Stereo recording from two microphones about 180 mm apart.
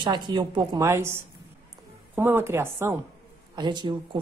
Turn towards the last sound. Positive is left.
turn(degrees=-25)  # may be behind; listen again after turning